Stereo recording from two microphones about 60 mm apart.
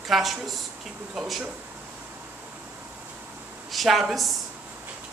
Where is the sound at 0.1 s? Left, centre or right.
Centre.